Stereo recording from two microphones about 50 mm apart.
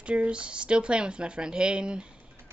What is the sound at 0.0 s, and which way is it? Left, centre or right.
Speech, right.